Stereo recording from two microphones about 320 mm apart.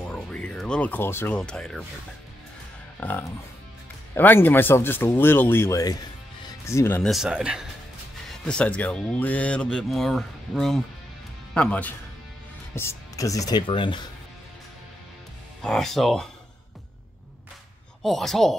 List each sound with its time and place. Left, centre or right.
0.1 s speech: centre
3.0 s speech: centre
15.6 s speech: centre
18.0 s speech: centre